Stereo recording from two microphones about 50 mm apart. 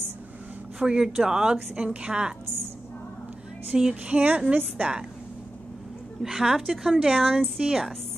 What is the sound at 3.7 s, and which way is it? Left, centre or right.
Speech, centre.